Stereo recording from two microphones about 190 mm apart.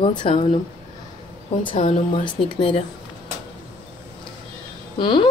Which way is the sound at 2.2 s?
25° left (ahead or behind).